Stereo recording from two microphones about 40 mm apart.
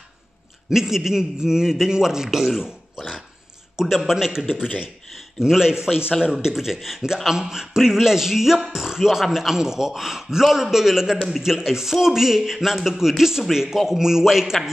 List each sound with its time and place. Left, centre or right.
0.7 s a man's voice: centre
5.4 s speech: centre